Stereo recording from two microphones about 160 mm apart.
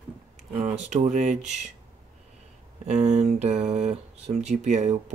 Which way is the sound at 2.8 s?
45° right (ahead or behind).